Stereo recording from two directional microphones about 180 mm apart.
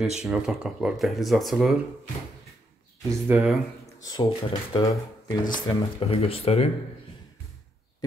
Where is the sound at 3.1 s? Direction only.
10° right (ahead or behind).